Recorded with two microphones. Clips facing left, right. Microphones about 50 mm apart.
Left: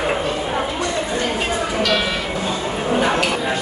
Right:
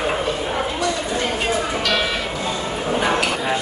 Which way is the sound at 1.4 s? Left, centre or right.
Centre.